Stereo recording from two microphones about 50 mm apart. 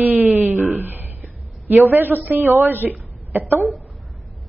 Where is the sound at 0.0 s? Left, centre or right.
Right.